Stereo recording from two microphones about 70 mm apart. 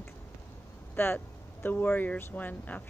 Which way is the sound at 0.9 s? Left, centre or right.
Left.